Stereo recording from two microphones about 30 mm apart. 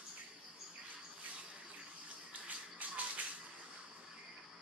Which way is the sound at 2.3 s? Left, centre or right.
Right.